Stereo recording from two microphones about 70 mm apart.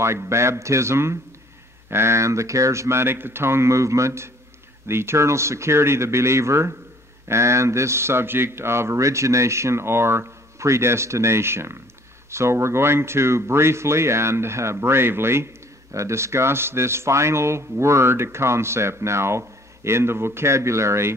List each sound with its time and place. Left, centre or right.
0.0 s speech: right